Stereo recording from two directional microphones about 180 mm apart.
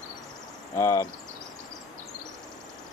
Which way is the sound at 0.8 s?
15° left (ahead or behind).